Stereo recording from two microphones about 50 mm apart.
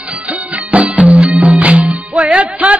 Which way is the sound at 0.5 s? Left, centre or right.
Right.